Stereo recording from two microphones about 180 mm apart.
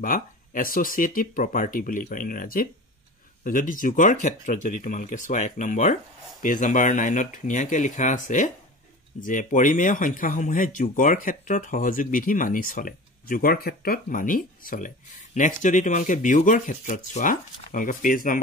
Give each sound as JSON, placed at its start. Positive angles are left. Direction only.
{"t": 0.0, "sound": "speech", "side_deg": 50}